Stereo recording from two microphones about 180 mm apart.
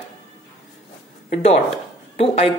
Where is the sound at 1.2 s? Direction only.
40° left (ahead or behind).